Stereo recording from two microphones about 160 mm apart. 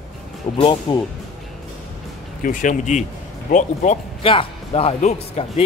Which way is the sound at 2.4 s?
55° left (ahead or behind).